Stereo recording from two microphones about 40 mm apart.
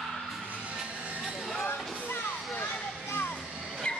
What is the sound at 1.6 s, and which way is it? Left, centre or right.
Music, left.